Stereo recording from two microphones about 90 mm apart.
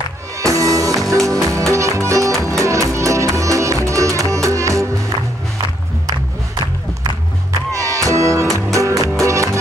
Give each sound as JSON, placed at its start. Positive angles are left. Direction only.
{"t": 0.4, "sound": "music", "side_deg": -35}
{"t": 7.7, "sound": "music", "side_deg": -35}